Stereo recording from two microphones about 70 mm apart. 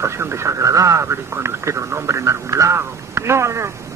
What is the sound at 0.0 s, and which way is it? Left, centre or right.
A man's voice, right.